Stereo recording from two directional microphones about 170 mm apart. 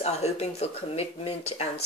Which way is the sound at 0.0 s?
40° left (ahead or behind).